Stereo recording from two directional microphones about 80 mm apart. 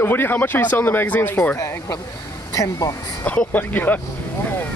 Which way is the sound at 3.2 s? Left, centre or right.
Centre.